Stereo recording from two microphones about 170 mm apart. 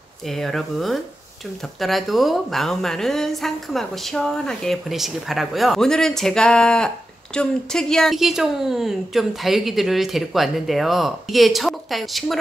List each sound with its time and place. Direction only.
0.3 s a woman's voice: centre (ahead or behind)